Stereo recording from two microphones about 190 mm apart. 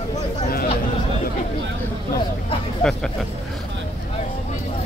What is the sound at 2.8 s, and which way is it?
Speech, 5° left (ahead or behind).